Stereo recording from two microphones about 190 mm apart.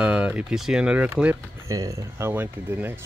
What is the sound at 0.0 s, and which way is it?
Speech, 5° right (ahead or behind).